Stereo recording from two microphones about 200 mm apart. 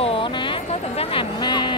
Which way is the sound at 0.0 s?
25° left (ahead or behind).